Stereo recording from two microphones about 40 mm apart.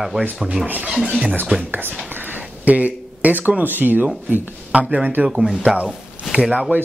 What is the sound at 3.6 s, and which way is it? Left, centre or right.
Speech, right.